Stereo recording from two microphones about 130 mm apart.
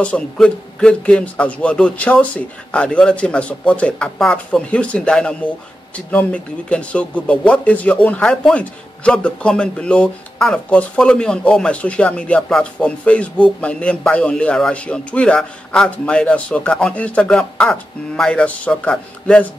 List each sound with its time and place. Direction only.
0.0 s speech: 10° left (ahead or behind)